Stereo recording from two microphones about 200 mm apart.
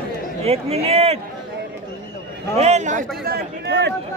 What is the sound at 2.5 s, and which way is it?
Speech, 35° right (ahead or behind).